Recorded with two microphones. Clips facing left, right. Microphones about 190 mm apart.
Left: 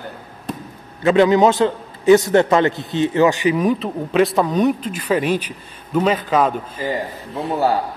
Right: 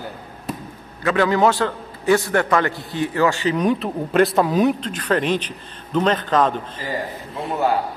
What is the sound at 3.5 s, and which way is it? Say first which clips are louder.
Speech: left 1 dB; centre (ahead or behind).